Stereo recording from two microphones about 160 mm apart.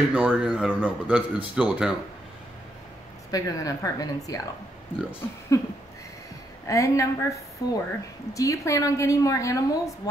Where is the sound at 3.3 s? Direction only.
20° left (ahead or behind).